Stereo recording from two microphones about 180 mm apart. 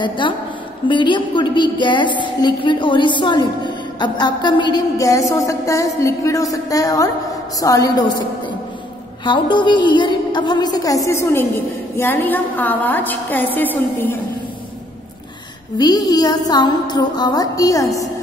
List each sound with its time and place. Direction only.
0.0 s a woman's voice: 25° left (ahead or behind)
9.2 s a woman's voice: 25° left (ahead or behind); by 14.1 s 10° left (ahead or behind)
15.8 s a woman's voice: 20° left (ahead or behind)